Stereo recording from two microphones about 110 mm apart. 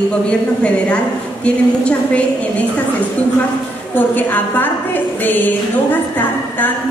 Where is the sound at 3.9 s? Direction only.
15° left (ahead or behind).